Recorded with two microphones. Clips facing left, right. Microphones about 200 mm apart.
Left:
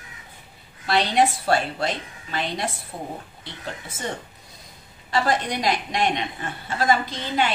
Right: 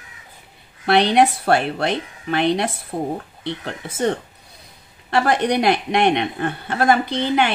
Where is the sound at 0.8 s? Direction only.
60° right (ahead or behind).